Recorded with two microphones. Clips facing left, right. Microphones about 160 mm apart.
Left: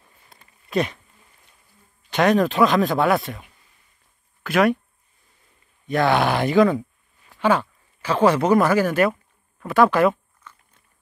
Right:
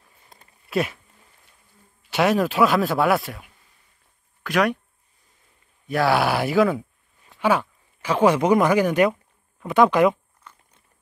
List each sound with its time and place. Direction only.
0.7 s speech: 5° right (ahead or behind)
2.0 s speech: 5° right (ahead or behind)
5.9 s speech: 5° right (ahead or behind)